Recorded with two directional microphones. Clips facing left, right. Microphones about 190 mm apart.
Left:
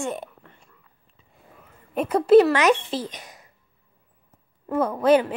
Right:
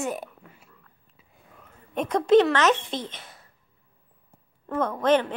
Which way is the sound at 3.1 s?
15° left (ahead or behind).